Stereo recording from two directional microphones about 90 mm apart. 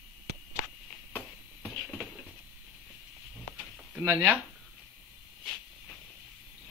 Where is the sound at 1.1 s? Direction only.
25° left (ahead or behind).